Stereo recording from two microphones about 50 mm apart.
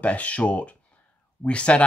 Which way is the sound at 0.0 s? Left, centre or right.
Left.